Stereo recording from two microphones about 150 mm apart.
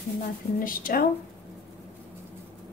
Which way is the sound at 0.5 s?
70° left (ahead or behind).